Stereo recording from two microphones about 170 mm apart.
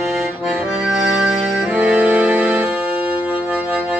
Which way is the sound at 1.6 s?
10° right (ahead or behind).